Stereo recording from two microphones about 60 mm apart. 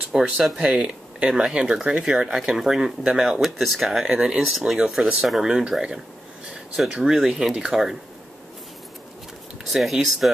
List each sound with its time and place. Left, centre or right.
0.1 s speech: centre
3.3 s speech: centre
4.0 s speech: centre
7.1 s speech: centre
9.7 s speech: centre